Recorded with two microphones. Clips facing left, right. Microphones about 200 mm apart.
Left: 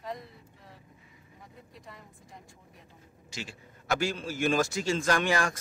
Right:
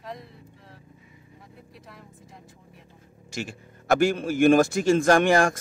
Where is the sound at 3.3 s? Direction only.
50° right (ahead or behind).